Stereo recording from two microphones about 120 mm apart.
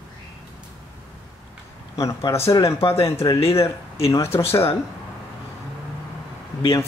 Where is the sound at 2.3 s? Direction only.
25° left (ahead or behind).